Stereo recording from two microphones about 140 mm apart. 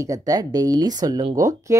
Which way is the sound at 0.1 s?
25° right (ahead or behind).